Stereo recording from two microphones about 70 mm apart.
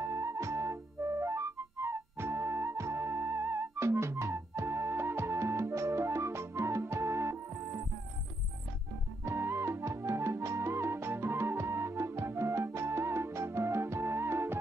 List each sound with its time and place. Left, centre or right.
0.0 s music: right
9.2 s music: right